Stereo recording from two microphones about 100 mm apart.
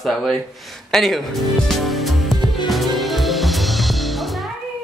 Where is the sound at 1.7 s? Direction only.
Centre (ahead or behind).